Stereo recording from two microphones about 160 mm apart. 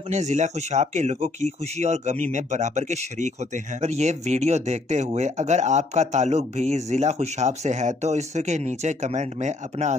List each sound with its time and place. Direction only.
0.1 s speech: 45° right (ahead or behind)